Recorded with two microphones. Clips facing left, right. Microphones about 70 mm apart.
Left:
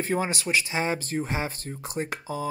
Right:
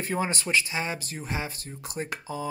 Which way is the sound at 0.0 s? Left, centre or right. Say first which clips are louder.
Left 2 dB; centre.